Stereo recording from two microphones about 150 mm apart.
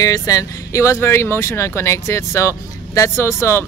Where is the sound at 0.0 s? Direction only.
25° left (ahead or behind).